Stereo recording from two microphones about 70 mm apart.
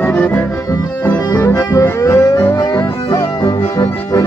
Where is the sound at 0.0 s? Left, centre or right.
Left.